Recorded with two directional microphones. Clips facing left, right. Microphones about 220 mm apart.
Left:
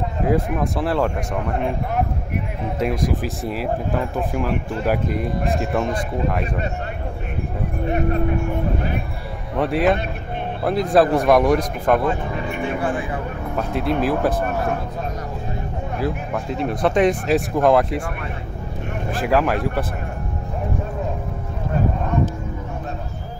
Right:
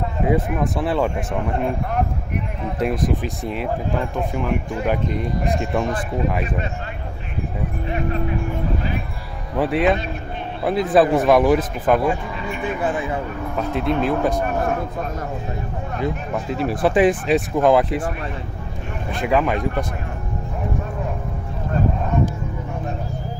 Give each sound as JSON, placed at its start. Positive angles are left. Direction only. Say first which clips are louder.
{"t": 0.2, "sound": "speech", "louder": "even", "side_deg": 0}
{"t": 2.8, "sound": "speech", "louder": "right 1 dB", "side_deg": 0}
{"t": 7.8, "sound": "speech", "louder": "left 4 dB", "side_deg": 50}
{"t": 9.6, "sound": "speech", "louder": "even", "side_deg": 0}
{"t": 12.3, "sound": "speech", "louder": "left 2 dB", "side_deg": 50}
{"t": 12.6, "sound": "speech", "louder": "right 2 dB", "side_deg": -20}
{"t": 13.6, "sound": "speech", "louder": "even", "side_deg": 0}
{"t": 16.0, "sound": "speech", "louder": "even", "side_deg": 0}
{"t": 19.1, "sound": "speech", "louder": "even", "side_deg": 0}